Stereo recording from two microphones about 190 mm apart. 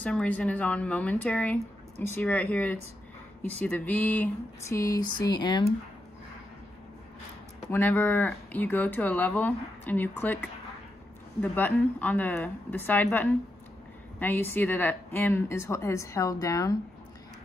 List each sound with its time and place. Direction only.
0.0 s speech: 5° left (ahead or behind); by 5.7 s 20° left (ahead or behind)
7.7 s speech: 10° left (ahead or behind)
11.4 s speech: 10° left (ahead or behind)